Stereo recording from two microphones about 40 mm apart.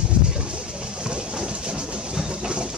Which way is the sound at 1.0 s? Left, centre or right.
Right.